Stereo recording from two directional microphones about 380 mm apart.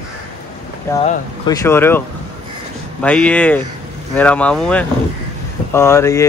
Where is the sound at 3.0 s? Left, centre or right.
Centre.